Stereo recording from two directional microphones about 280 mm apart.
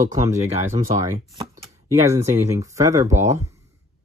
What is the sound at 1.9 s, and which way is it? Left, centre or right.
Speech, centre.